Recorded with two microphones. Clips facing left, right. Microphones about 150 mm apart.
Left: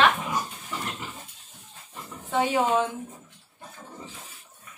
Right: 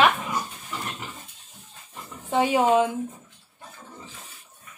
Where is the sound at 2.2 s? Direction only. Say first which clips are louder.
Right 3 dB; 15° right (ahead or behind).